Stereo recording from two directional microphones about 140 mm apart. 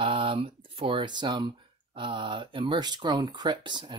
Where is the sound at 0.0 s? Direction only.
40° right (ahead or behind).